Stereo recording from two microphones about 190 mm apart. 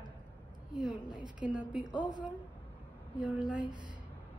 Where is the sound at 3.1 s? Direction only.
5° right (ahead or behind).